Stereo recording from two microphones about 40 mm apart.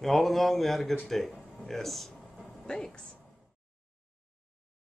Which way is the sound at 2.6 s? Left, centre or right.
Centre.